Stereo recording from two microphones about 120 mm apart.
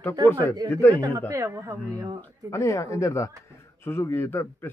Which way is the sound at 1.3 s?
25° right (ahead or behind).